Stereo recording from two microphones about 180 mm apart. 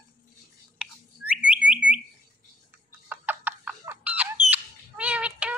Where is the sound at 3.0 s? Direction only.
10° right (ahead or behind).